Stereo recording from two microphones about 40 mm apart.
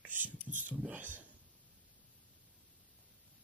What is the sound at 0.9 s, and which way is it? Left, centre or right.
Speech, right.